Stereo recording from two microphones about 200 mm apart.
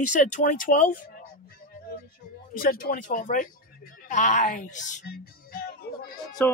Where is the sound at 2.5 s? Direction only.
45° left (ahead or behind).